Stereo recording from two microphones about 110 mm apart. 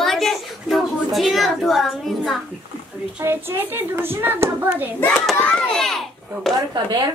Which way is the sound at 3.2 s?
20° right (ahead or behind).